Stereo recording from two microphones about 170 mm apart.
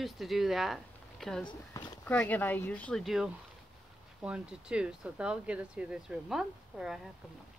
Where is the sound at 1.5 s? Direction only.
25° left (ahead or behind).